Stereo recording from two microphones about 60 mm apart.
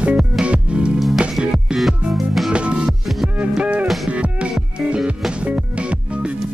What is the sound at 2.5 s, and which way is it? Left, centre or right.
Music, centre.